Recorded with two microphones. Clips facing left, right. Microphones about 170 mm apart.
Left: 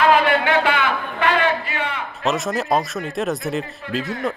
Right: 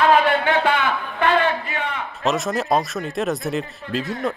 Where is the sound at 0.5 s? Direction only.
70° left (ahead or behind).